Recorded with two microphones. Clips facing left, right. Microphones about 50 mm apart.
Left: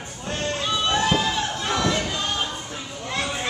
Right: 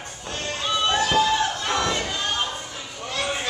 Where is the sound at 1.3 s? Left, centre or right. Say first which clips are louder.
Right 2 dB; centre.